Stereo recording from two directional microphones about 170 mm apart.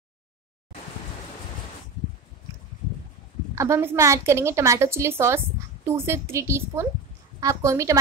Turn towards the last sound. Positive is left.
turn(degrees=-20)  # may be behind; listen again after turning